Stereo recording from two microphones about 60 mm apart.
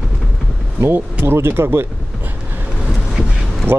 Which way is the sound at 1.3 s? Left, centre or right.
Right.